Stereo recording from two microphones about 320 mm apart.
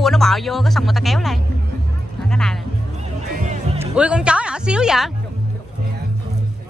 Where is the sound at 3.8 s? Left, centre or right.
Centre.